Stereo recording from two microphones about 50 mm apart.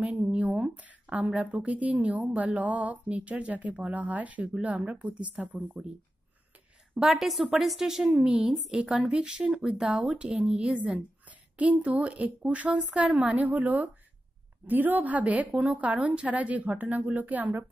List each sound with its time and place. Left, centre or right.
0.0 s a sound: right
1.5 s a woman's voice: right
7.0 s a woman's voice: centre
8.1 s a woman's voice: centre
8.5 s a woman's voice: centre
8.8 s a woman's voice: centre
9.8 s a woman's voice: right
10.8 s a woman's voice: right